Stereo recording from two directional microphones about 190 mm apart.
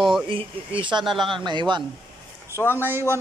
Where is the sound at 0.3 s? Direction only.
30° right (ahead or behind).